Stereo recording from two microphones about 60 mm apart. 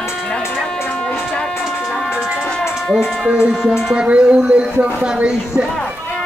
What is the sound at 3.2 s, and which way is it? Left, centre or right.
Speech, centre.